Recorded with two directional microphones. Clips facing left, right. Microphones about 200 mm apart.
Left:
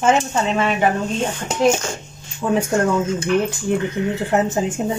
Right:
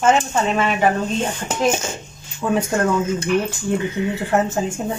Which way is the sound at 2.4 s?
15° left (ahead or behind).